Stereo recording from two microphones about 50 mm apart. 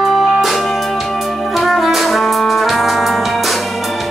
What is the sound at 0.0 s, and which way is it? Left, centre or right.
Music, centre.